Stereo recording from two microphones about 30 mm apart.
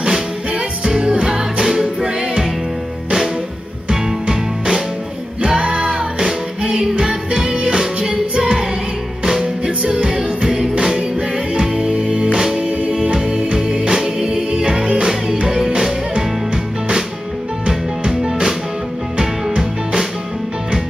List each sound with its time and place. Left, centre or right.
0.0 s music: right
3.9 s music: centre
5.4 s music: right
6.8 s music: right
10.0 s music: right
15.4 s music: centre
17.6 s music: right